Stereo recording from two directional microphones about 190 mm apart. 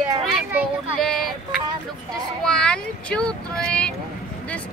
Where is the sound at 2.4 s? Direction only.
5° left (ahead or behind).